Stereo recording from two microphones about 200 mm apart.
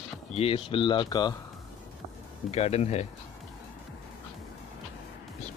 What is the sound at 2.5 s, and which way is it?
Speech, 30° left (ahead or behind).